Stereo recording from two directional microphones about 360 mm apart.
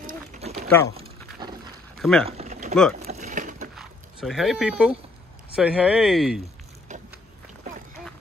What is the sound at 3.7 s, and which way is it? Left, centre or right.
Speech, centre.